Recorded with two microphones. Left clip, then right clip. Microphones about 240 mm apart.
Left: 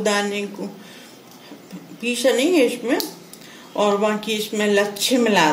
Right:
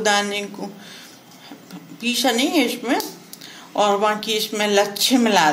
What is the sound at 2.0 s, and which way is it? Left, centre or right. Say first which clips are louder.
A woman's voice: left 2 dB; right.